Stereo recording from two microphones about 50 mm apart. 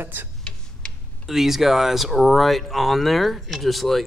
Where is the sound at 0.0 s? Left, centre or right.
Right.